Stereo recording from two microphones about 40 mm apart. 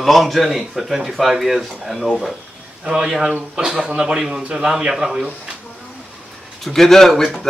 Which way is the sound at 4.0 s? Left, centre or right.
Centre.